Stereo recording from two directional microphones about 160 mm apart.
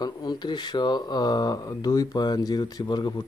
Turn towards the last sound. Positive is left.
turn(degrees=30)  # may be behind; listen again after turning